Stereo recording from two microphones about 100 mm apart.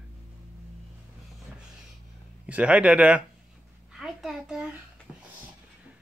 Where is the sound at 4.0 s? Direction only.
5° right (ahead or behind).